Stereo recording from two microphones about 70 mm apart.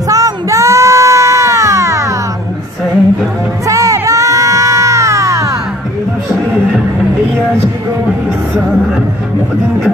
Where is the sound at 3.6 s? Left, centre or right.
Right.